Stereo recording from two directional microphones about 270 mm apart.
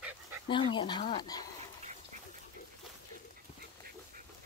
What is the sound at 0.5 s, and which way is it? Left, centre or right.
Speech, centre.